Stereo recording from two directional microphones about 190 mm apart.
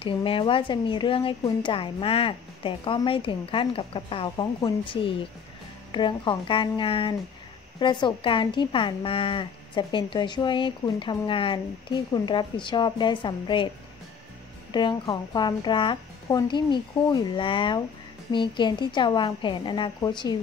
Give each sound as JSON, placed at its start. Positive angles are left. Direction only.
{"t": 0.0, "sound": "speech", "side_deg": 30}
{"t": 14.7, "sound": "speech", "side_deg": 25}